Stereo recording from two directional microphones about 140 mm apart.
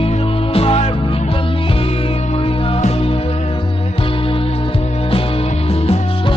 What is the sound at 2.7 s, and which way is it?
Music, 45° left (ahead or behind).